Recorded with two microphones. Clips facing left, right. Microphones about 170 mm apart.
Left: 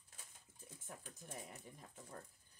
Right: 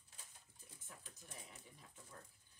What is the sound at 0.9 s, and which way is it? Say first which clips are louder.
Speech: left 6 dB; 50° left (ahead or behind).